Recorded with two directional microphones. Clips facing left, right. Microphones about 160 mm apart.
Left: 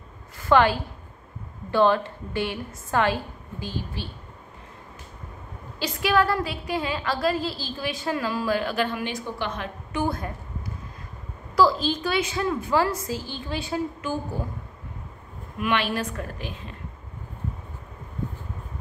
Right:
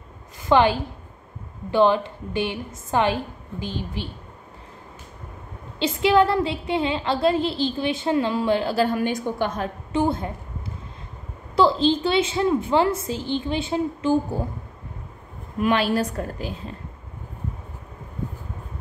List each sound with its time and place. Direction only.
0.4 s a woman's voice: 20° right (ahead or behind)
5.8 s a woman's voice: 25° right (ahead or behind); by 9.7 s 45° right (ahead or behind)
9.9 s a woman's voice: 25° right (ahead or behind)
15.6 s a woman's voice: 35° right (ahead or behind)